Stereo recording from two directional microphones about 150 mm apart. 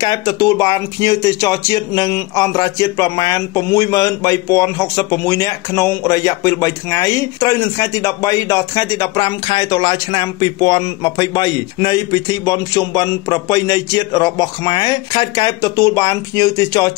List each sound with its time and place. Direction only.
0.0 s speech: 25° left (ahead or behind)